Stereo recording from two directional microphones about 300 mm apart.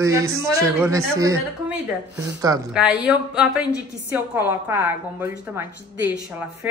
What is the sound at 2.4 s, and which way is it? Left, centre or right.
A woman's voice, centre.